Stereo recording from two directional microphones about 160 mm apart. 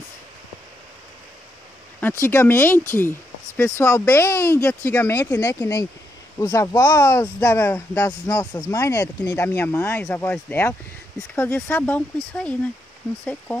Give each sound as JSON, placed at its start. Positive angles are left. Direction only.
{"t": 2.0, "sound": "speech", "side_deg": 15}
{"t": 13.2, "sound": "speech", "side_deg": 10}